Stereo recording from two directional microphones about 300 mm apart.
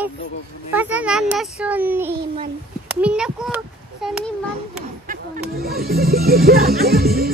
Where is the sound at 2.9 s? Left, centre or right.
Centre.